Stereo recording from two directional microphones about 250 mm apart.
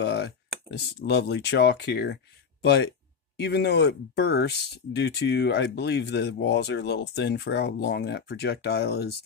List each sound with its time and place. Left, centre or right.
0.0 s speech: left